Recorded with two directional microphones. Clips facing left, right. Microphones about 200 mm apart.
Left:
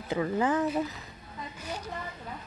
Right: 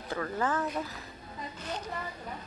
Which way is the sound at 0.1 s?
15° left (ahead or behind).